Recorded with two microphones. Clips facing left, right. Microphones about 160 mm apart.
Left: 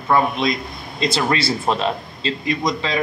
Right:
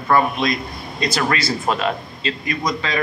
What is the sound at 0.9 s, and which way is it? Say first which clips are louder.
A man's voice: left 1 dB; 25° left (ahead or behind).